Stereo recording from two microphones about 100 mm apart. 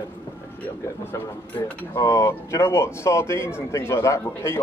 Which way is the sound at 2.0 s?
30° left (ahead or behind).